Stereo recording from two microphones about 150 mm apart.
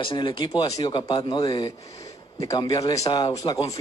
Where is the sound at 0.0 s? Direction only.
35° left (ahead or behind).